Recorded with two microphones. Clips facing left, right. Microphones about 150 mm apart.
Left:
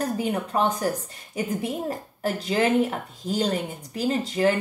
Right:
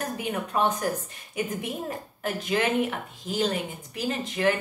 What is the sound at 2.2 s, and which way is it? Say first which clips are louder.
Speech: left 3 dB; 35° left (ahead or behind).